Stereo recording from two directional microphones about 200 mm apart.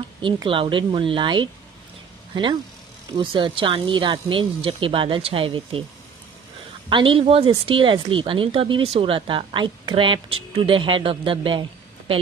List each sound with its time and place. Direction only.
0.2 s speech: 25° right (ahead or behind)
3.2 s speech: 25° right (ahead or behind)
6.9 s speech: 25° right (ahead or behind)